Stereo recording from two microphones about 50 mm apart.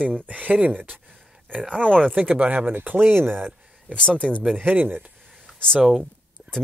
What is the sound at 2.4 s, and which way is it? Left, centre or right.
Speech, right.